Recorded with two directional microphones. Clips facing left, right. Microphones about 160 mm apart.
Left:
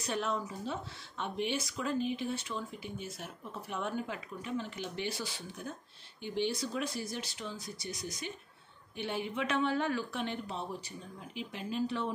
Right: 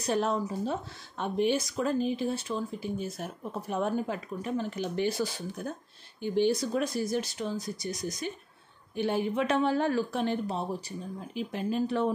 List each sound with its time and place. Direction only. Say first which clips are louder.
0.0 s speech: right 6 dB; 40° right (ahead or behind)